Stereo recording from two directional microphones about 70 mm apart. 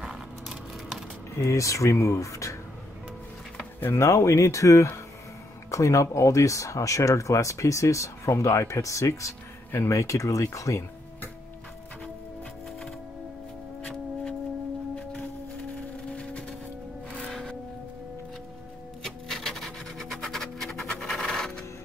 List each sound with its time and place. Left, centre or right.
0.0 s a sound: centre
1.3 s speech: left
3.8 s speech: left
15.7 s singing bowl: centre
17.3 s music: centre
19.0 s music: centre